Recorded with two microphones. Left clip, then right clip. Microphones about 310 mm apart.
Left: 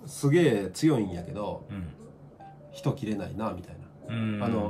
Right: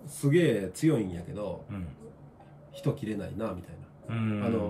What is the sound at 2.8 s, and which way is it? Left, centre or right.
Speech, centre.